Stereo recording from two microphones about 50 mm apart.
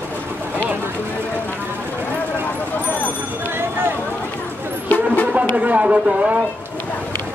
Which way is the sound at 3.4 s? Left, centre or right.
Right.